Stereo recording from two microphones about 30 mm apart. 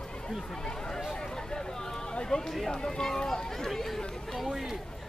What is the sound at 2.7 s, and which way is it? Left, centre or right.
Speech, centre.